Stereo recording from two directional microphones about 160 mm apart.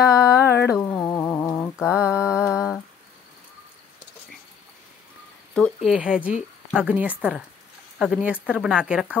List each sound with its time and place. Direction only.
0.1 s music: 15° left (ahead or behind)
0.7 s humming: 10° left (ahead or behind)
1.8 s mantra: 5° right (ahead or behind)
5.5 s speech: 5° left (ahead or behind)
5.9 s speech: 5° right (ahead or behind)